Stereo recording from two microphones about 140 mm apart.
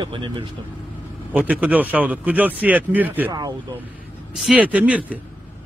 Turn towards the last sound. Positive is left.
turn(degrees=-10)  # may be behind; listen again after turning